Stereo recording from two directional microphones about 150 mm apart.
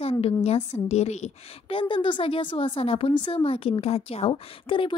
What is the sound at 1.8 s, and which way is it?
Speech, 35° left (ahead or behind).